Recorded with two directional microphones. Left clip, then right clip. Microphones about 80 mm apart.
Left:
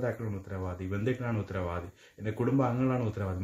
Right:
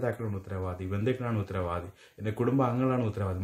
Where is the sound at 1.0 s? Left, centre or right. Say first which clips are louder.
Right 2 dB; right.